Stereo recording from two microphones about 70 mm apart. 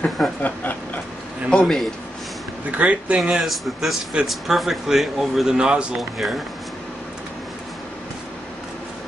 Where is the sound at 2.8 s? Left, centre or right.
Centre.